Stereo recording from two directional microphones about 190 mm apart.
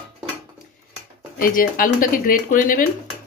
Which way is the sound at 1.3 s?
50° left (ahead or behind).